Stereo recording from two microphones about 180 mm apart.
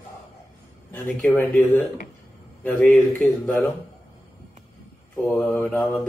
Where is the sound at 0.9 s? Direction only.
5° left (ahead or behind).